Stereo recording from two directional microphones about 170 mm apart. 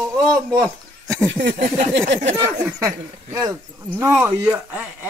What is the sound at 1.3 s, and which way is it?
Speech, 90° right.